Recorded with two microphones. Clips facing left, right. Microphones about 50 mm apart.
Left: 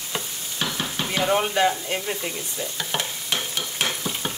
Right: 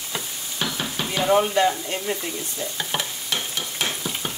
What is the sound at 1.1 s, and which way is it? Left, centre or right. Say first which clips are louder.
Stir: right 3 dB; centre.